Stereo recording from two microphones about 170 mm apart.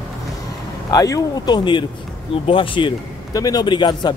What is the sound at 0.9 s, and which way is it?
Speech, 20° left (ahead or behind).